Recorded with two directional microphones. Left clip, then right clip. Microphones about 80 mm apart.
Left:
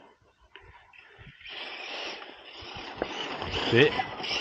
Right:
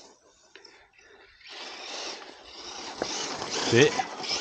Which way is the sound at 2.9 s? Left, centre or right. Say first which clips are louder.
Right 1 dB; right.